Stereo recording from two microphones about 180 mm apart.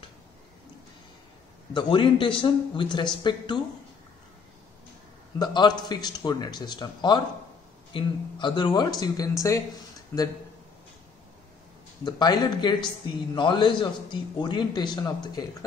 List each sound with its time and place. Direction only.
1.7 s a man's voice: 25° left (ahead or behind)
5.4 s a man's voice: 25° left (ahead or behind)
12.0 s a man's voice: 25° left (ahead or behind)